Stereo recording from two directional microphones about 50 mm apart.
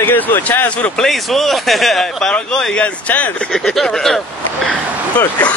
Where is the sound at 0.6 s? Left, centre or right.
Left.